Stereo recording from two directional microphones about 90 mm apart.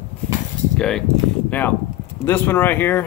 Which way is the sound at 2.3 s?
25° left (ahead or behind).